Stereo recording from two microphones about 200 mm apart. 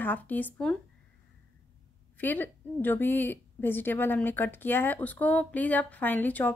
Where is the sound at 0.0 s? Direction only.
10° left (ahead or behind).